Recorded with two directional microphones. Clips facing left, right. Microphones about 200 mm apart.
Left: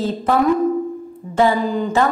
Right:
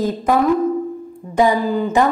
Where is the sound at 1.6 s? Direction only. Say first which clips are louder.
Right 1 dB; 5° right (ahead or behind).